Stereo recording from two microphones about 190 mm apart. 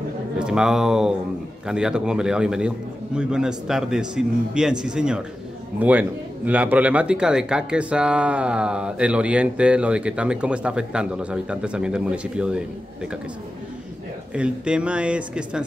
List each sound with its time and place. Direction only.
0.4 s speech: 5° right (ahead or behind)
14.3 s speech: 5° right (ahead or behind)